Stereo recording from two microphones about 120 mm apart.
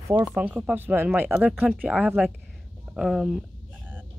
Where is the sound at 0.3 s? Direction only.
10° right (ahead or behind).